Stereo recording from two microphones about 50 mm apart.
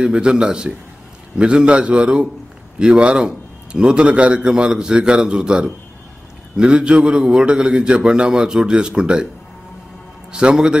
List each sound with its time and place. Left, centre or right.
0.0 s a man's voice: centre
6.7 s a man's voice: right
10.3 s a man's voice: centre